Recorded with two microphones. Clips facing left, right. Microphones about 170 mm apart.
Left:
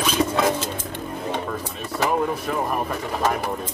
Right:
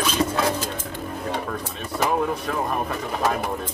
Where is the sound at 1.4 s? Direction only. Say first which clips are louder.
Left 1 dB; 5° left (ahead or behind).